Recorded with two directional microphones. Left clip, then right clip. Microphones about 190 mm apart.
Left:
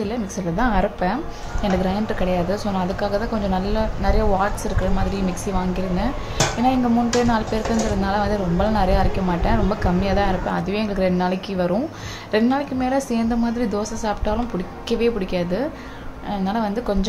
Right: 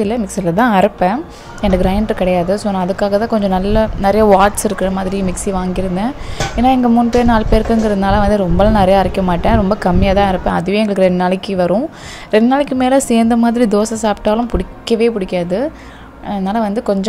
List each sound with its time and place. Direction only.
0.0 s a woman's voice: 40° right (ahead or behind)
4.9 s a woman's voice: 40° right (ahead or behind)